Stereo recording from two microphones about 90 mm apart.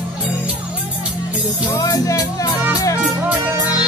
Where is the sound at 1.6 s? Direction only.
40° left (ahead or behind).